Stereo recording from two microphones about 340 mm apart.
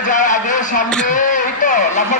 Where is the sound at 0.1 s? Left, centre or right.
Left.